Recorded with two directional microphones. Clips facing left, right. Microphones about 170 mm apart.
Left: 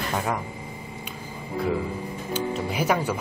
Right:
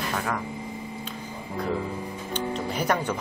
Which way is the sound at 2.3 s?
5° left (ahead or behind).